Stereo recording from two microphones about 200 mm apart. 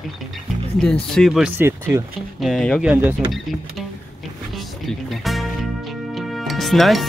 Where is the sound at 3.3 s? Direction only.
Centre (ahead or behind).